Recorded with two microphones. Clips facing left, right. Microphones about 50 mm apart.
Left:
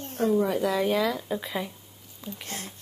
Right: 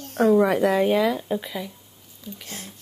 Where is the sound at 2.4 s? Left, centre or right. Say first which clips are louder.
Left 2 dB; left.